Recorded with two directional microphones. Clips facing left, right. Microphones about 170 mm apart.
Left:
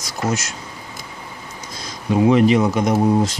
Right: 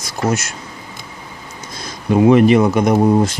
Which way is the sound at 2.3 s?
55° right (ahead or behind).